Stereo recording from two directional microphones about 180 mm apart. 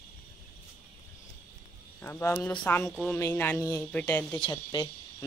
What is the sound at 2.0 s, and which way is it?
A woman's voice, 10° left (ahead or behind).